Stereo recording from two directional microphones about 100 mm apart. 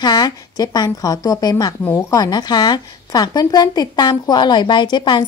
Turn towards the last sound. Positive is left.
turn(degrees=50)  # may be behind; listen again after turning